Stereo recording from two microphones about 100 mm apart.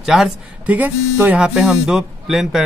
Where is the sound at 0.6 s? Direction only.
15° right (ahead or behind).